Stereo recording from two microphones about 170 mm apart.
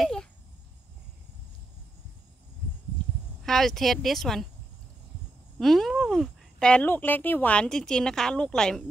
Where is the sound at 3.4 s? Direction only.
Centre (ahead or behind).